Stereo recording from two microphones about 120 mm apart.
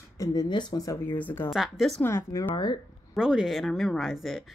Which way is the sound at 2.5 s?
40° left (ahead or behind).